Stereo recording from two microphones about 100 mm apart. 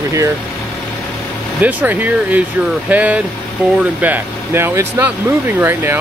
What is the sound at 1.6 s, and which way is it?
Speech, 15° right (ahead or behind).